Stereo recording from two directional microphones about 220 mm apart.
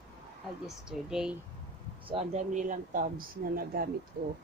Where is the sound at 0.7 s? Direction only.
5° right (ahead or behind).